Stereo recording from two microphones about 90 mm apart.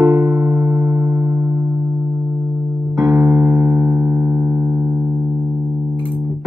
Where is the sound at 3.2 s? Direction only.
35° right (ahead or behind).